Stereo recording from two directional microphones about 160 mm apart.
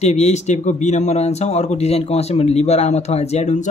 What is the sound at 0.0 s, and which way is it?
Speech, 45° left (ahead or behind).